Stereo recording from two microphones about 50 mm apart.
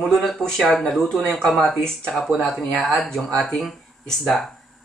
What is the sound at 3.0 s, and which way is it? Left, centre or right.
Speech, centre.